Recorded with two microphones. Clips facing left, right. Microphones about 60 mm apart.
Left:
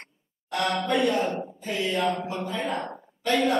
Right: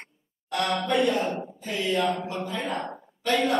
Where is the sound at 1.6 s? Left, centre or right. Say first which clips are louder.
Left 1 dB; left.